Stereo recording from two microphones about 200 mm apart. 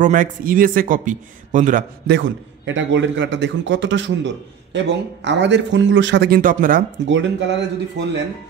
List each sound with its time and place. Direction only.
0.0 s a man's voice: 40° right (ahead or behind)
2.0 s a man's voice: 65° right (ahead or behind); by 6.8 s 45° right (ahead or behind)
7.1 s a man's voice: 65° right (ahead or behind)